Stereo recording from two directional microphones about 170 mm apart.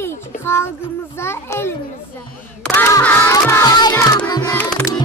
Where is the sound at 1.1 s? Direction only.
15° left (ahead or behind).